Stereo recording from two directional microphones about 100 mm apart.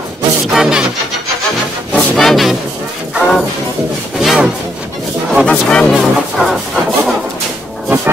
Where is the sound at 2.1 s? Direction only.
Centre (ahead or behind).